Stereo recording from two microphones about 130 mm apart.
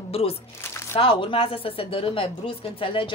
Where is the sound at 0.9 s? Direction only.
45° left (ahead or behind).